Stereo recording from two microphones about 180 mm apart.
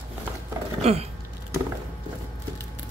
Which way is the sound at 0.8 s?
35° right (ahead or behind).